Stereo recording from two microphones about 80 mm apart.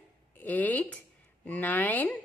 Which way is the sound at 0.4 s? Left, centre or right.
Left.